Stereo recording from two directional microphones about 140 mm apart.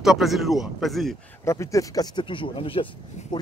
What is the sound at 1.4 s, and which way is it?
Speech, 20° left (ahead or behind).